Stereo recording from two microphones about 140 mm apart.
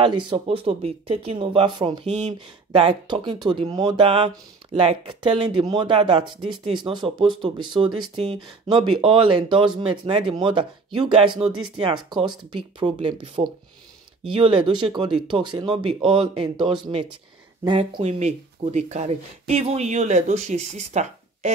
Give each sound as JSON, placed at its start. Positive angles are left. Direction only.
{"t": 0.0, "sound": "speech", "side_deg": -35}
{"t": 18.0, "sound": "speech", "side_deg": -50}